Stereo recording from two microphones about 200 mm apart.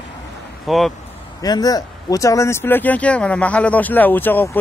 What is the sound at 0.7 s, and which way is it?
Speech, centre (ahead or behind).